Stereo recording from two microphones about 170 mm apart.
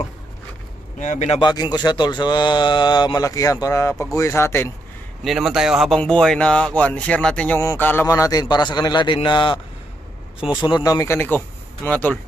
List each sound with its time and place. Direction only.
0.9 s a man's voice: 45° left (ahead or behind)
1.4 s a sound: 25° left (ahead or behind)
3.6 s speech: 15° left (ahead or behind)
5.2 s speech: centre (ahead or behind)
7.8 s a sound: 15° left (ahead or behind)
10.5 s speech: 25° left (ahead or behind); by 12.2 s 10° left (ahead or behind)